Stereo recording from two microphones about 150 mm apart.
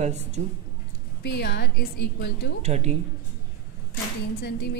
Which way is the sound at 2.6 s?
45° right (ahead or behind).